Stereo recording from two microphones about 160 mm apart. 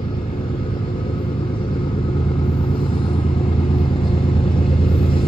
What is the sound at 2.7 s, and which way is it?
Vehicle, 35° left (ahead or behind).